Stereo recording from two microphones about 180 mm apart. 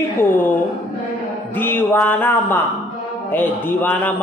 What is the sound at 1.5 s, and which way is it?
A woman's voice, 10° left (ahead or behind).